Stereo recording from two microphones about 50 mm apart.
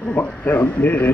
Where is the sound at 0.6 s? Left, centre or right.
Left.